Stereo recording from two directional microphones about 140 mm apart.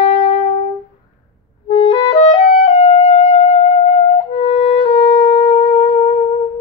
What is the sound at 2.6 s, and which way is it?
Music, 45° left (ahead or behind).